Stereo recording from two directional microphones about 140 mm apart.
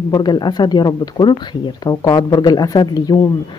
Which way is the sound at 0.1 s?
30° left (ahead or behind).